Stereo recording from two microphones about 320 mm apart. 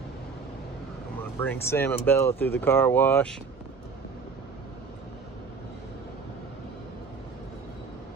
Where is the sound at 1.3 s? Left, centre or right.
Centre.